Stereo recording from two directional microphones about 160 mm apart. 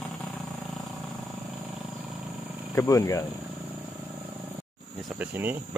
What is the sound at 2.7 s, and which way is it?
Speech, 20° left (ahead or behind).